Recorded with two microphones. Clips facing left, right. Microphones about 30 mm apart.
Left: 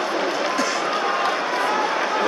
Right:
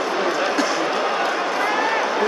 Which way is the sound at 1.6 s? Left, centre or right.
Centre.